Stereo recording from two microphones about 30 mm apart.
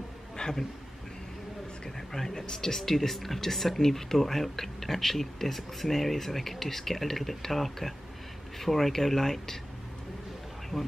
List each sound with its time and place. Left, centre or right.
0.4 s a sound: left
2.0 s speech: centre
10.7 s speech: centre